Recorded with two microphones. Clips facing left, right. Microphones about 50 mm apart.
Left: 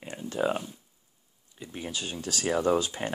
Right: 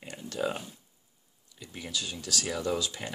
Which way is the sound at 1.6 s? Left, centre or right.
Left.